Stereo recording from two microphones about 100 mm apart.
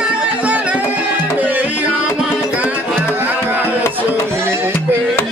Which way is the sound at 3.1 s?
15° right (ahead or behind).